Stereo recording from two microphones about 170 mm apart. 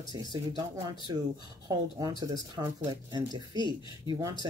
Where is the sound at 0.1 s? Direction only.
25° right (ahead or behind).